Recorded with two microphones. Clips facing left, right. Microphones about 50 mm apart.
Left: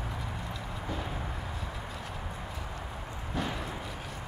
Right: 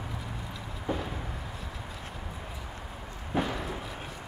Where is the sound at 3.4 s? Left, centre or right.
Centre.